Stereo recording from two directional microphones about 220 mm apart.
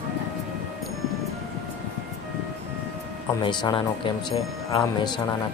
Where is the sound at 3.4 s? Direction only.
20° left (ahead or behind).